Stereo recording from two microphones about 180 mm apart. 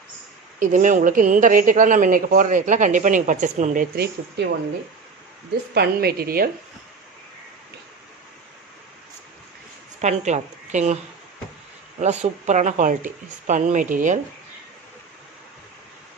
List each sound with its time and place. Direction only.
0.6 s a woman's voice: 45° right (ahead or behind); by 4.5 s 60° right (ahead or behind)
5.8 s a woman's voice: 60° right (ahead or behind)
9.9 s a woman's voice: 40° right (ahead or behind)
12.0 s a woman's voice: 40° right (ahead or behind)